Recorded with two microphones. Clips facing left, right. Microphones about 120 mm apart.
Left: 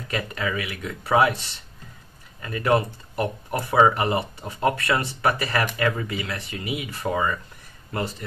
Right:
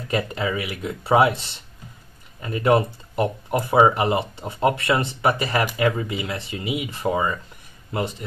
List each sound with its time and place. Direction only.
0.1 s speech: 25° right (ahead or behind)